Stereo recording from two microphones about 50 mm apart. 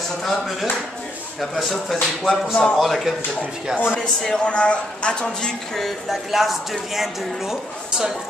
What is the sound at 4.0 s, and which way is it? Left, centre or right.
Speech, centre.